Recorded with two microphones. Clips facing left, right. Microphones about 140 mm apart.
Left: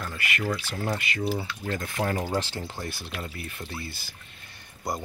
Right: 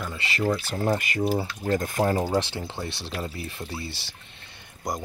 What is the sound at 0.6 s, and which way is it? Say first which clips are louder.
Speech: right 5 dB; 45° right (ahead or behind).